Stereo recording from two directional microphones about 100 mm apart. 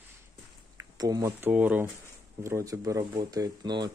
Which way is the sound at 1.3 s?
20° right (ahead or behind).